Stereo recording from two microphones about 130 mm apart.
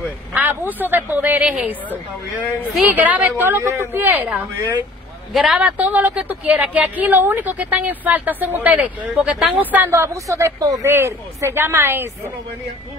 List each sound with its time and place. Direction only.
0.0 s speech: 15° right (ahead or behind)
2.9 s speech: 10° right (ahead or behind)